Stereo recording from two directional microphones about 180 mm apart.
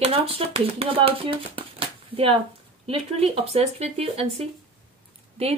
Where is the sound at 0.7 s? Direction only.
30° right (ahead or behind).